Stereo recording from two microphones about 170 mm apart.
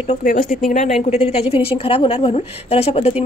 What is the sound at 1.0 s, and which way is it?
A woman's voice, 40° left (ahead or behind).